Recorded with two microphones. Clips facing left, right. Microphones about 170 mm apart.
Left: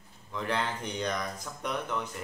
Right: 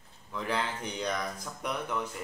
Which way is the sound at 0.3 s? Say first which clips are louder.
Left 1 dB; 5° right (ahead or behind).